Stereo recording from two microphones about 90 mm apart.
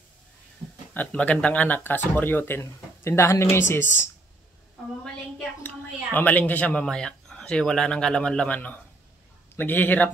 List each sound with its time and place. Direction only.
0.9 s speech: 15° left (ahead or behind)
6.1 s speech: 20° left (ahead or behind)